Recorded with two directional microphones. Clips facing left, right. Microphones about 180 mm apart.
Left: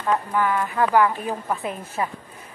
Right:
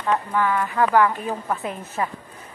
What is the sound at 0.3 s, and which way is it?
Speech, 15° left (ahead or behind).